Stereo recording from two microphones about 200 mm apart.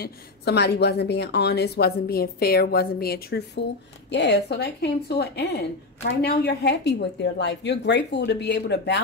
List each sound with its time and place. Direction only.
0.0 s a woman's voice: 55° left (ahead or behind)